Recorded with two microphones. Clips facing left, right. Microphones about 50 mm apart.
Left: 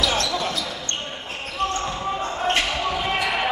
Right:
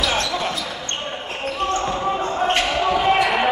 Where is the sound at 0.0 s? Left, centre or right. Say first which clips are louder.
Right 1 dB; centre.